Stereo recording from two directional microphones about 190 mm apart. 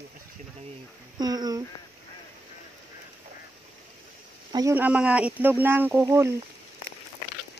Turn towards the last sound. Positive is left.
turn(degrees=-15)  # may be behind; listen again after turning